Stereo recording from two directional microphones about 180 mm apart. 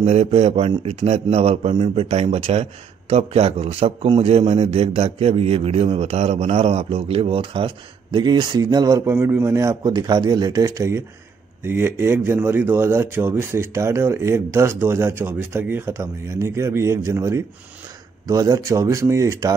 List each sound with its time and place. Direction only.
0.0 s a man's voice: 35° right (ahead or behind); by 19.5 s 15° right (ahead or behind)